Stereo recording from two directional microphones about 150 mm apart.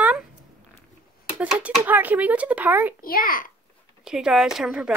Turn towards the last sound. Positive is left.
turn(degrees=-5)  # may be behind; listen again after turning